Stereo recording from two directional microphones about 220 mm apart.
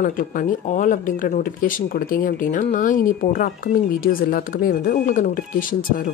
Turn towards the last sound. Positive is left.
turn(degrees=40)  # may be behind; listen again after turning